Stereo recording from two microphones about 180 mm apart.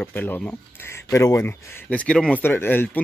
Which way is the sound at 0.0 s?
10° left (ahead or behind).